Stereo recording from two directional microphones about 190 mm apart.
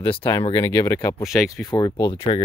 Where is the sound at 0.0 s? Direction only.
25° left (ahead or behind).